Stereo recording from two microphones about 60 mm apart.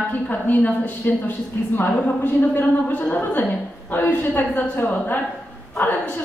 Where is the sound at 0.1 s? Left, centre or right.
Left.